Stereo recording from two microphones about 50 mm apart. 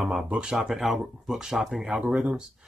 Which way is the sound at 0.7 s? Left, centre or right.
Centre.